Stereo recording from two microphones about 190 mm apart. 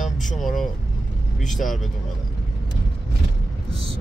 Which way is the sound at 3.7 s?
30° right (ahead or behind).